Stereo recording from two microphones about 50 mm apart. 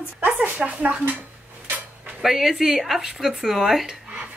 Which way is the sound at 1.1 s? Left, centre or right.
Right.